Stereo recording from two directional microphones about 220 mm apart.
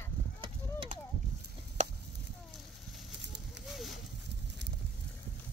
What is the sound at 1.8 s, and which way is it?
Chop, 30° right (ahead or behind).